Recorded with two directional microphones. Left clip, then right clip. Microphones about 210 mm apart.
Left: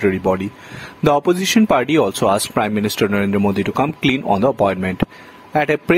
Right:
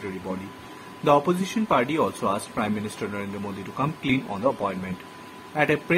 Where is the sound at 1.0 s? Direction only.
55° left (ahead or behind).